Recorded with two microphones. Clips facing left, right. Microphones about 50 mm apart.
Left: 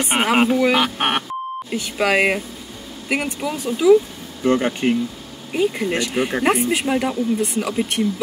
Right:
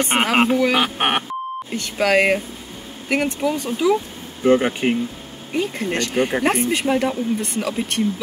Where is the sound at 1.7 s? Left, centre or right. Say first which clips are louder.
Right 1 dB; centre.